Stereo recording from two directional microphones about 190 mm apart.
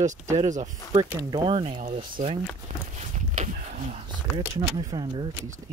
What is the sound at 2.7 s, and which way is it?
Walk, 40° right (ahead or behind).